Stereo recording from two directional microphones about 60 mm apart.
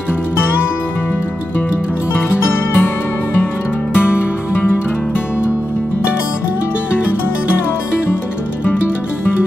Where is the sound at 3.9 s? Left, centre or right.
Left.